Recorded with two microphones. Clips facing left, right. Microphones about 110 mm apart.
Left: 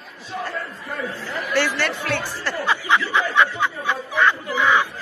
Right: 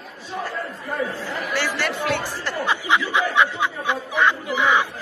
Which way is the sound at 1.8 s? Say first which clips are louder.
Right 1 dB; 10° right (ahead or behind).